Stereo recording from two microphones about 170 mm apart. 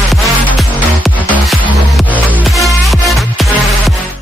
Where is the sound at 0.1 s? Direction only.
Centre (ahead or behind).